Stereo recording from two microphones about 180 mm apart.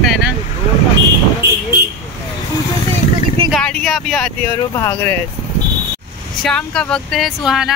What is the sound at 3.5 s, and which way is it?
Speech, 5° left (ahead or behind).